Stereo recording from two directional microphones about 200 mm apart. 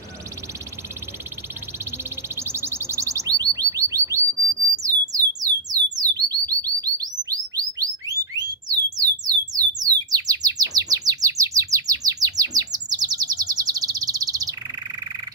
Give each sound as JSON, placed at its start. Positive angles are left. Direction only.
{"t": 1.9, "sound": "a sound", "side_deg": -10}
{"t": 5.9, "sound": "chirp tone", "side_deg": -20}
{"t": 8.1, "sound": "alarm", "side_deg": -20}